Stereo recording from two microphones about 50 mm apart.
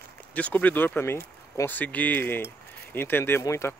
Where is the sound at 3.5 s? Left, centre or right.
Left.